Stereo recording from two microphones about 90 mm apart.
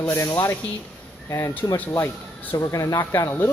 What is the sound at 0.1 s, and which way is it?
Speech, 30° left (ahead or behind).